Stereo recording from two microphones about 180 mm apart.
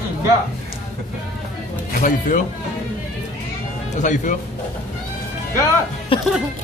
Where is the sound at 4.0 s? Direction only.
45° left (ahead or behind).